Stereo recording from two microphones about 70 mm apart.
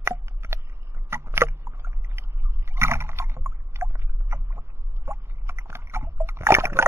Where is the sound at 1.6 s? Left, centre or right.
Right.